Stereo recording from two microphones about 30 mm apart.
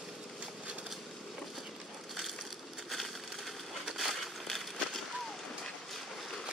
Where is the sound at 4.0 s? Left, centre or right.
Centre.